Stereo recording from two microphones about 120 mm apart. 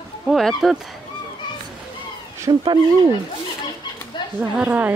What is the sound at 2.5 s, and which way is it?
Speech, 35° right (ahead or behind).